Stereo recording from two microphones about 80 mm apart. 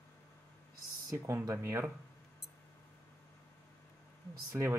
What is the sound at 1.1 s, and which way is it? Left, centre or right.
Speech, right.